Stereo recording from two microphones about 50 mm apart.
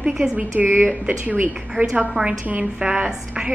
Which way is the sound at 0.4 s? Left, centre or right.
Right.